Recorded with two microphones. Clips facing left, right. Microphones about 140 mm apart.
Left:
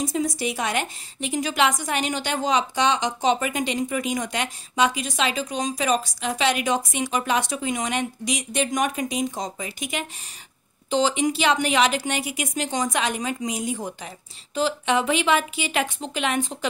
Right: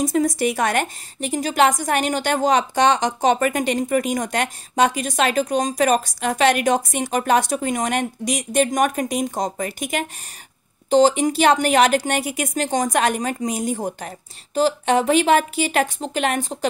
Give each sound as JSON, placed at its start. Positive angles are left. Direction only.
{"t": 0.0, "sound": "a woman's voice", "side_deg": -50}